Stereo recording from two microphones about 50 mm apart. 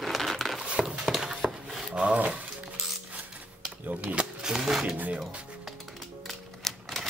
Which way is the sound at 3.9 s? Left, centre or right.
Right.